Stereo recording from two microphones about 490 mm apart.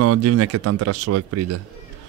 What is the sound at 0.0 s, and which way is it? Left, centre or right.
Speech, right.